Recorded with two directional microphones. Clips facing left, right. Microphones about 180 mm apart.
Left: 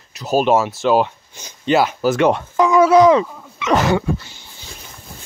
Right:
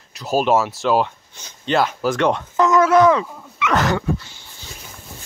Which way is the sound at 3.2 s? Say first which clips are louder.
Left 3 dB; 30° left (ahead or behind).